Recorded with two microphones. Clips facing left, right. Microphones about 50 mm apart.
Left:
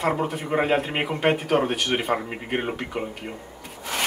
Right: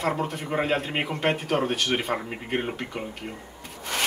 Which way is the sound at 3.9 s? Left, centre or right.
Centre.